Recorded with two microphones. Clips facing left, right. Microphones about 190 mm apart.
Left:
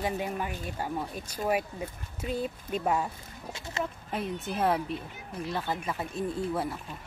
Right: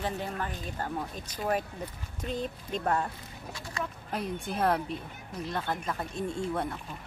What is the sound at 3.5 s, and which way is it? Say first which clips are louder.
Speech: left 3 dB; 25° left (ahead or behind).